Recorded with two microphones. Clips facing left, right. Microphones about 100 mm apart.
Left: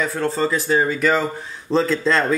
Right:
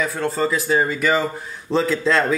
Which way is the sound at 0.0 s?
5° right (ahead or behind).